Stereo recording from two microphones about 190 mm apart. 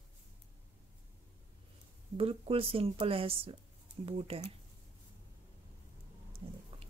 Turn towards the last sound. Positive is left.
turn(degrees=-30)  # may be behind; listen again after turning